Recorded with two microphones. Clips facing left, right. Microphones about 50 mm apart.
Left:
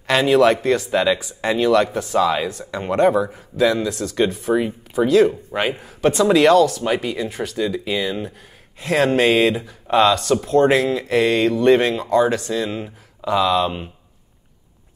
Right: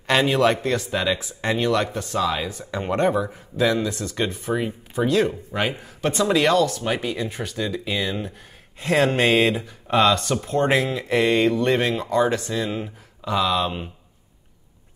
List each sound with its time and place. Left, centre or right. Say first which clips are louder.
0.0 s speech: left 4 dB; centre